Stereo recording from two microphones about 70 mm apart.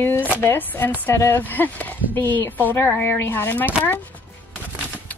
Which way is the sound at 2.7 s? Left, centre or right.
Left.